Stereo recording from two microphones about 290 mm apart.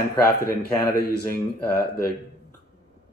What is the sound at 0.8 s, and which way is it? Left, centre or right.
Speech, left.